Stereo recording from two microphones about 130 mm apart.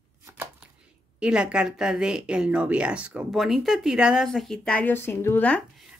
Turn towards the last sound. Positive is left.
turn(degrees=15)  # may be behind; listen again after turning